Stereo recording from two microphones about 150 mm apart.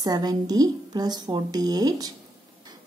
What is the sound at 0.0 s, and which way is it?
A woman's voice, 25° right (ahead or behind).